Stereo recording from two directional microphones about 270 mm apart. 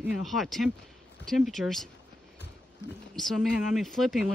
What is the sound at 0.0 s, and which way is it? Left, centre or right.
Speech, centre.